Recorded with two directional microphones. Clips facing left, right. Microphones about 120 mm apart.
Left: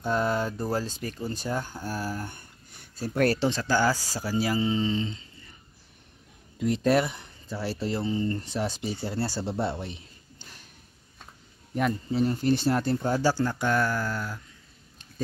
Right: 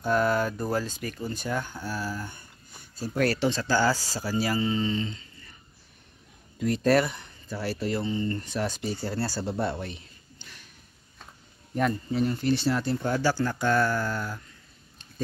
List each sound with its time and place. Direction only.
0.1 s speech: 25° left (ahead or behind); by 3.3 s 50° left (ahead or behind)
3.3 s speech: 20° left (ahead or behind)
6.6 s speech: 20° left (ahead or behind)
10.4 s a sound: 40° left (ahead or behind)
12.1 s speech: 30° left (ahead or behind)
12.4 s speech: 45° left (ahead or behind)
13.5 s mantra: 15° left (ahead or behind)